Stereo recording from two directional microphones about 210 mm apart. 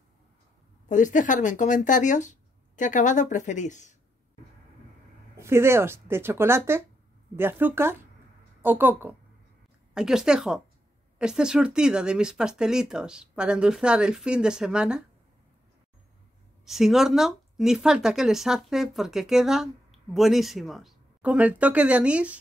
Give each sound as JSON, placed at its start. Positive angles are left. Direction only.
{"t": 0.8, "sound": "speech", "side_deg": 35}
{"t": 5.4, "sound": "speech", "side_deg": -10}
{"t": 16.6, "sound": "speech", "side_deg": 0}